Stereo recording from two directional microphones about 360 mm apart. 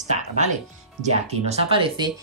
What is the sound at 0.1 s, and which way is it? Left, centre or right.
Speech, centre.